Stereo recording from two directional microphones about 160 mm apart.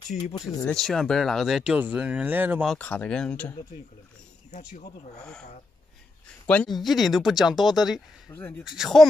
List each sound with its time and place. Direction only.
0.3 s speech: 20° left (ahead or behind)
0.7 s speech: 5° left (ahead or behind)
2.8 s speech: 10° left (ahead or behind)
4.5 s speech: 50° left (ahead or behind)
5.1 s speech: 5° left (ahead or behind)
6.4 s speech: 10° left (ahead or behind)
8.3 s speech: 10° left (ahead or behind)
8.6 s speech: centre (ahead or behind)